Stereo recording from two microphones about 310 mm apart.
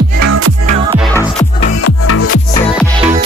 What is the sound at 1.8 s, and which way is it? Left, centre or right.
Music, left.